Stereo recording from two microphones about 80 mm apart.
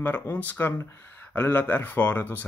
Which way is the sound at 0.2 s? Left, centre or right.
Left.